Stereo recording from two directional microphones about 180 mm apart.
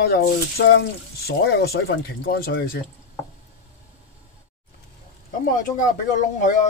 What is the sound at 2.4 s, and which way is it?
Speech, 60° left (ahead or behind).